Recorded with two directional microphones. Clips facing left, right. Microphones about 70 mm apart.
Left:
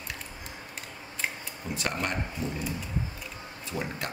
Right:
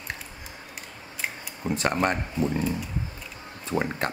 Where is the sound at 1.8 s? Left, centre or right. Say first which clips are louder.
Right 6 dB; right.